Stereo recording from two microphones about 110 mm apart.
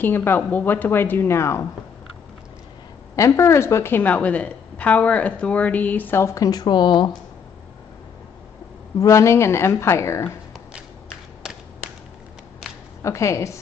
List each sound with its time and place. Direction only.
0.0 s a woman's voice: 20° left (ahead or behind)
3.2 s a woman's voice: 25° left (ahead or behind); by 7.2 s 45° left (ahead or behind)
9.0 s a woman's voice: 25° left (ahead or behind)
13.0 s a woman's voice: 30° left (ahead or behind)